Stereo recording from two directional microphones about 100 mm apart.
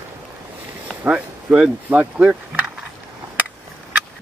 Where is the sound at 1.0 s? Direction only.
15° right (ahead or behind).